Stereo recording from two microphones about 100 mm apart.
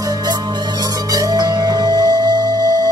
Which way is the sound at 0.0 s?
40° right (ahead or behind).